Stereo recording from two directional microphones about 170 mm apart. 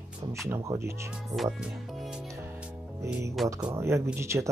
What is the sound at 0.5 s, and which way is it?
Speech, 15° right (ahead or behind).